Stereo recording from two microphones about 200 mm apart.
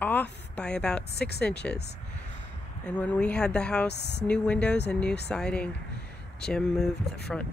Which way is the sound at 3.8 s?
55° left (ahead or behind).